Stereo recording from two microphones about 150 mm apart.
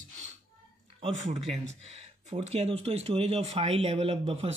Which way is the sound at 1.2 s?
45° right (ahead or behind).